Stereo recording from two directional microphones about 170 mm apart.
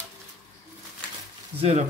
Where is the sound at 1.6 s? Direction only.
40° right (ahead or behind).